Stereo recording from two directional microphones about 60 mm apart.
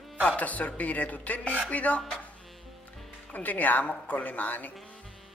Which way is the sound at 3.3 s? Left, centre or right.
Left.